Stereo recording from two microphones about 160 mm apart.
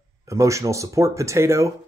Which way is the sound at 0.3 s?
20° right (ahead or behind).